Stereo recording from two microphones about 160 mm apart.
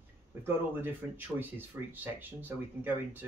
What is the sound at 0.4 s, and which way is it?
Speech, 15° right (ahead or behind).